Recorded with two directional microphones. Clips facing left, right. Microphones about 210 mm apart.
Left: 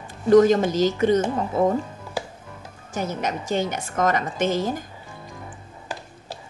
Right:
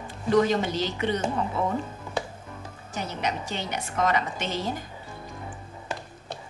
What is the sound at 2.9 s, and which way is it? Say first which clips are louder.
A woman's voice: left 4 dB; 45° left (ahead or behind).